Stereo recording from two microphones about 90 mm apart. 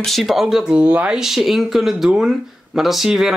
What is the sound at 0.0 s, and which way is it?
Speech, centre (ahead or behind).